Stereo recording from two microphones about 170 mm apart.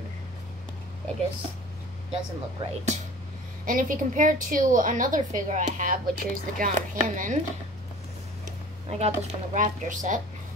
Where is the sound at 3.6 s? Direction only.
50° right (ahead or behind).